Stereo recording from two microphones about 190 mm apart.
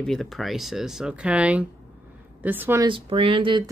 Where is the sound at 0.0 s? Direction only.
Centre (ahead or behind).